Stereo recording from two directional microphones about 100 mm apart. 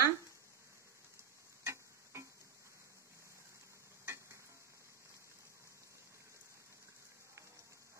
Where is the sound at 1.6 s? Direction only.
30° right (ahead or behind).